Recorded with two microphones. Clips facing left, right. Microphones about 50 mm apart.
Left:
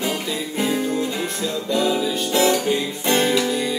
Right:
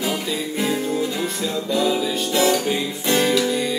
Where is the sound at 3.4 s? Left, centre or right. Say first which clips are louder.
Right 1 dB; centre.